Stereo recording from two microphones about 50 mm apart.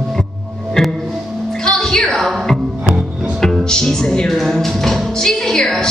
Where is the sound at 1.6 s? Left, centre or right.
Centre.